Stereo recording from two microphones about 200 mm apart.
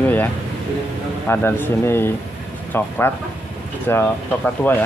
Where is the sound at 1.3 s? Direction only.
10° left (ahead or behind).